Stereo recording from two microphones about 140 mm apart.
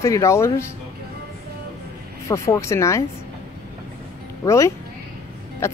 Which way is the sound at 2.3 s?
20° left (ahead or behind).